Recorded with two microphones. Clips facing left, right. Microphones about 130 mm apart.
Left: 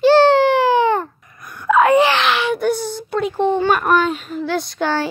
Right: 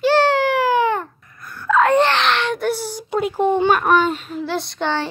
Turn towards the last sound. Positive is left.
turn(degrees=5)  # may be behind; listen again after turning